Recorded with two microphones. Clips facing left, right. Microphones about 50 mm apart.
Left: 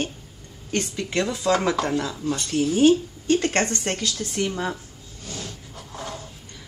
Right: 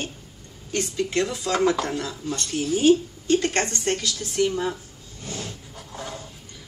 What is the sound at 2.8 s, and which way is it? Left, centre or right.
A woman's voice, left.